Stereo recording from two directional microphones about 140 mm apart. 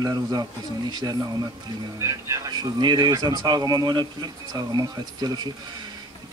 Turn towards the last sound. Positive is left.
turn(degrees=-30)  # may be behind; listen again after turning